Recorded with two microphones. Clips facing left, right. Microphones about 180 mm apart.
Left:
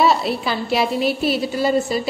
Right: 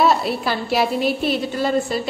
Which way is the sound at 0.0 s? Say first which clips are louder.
Even; centre (ahead or behind).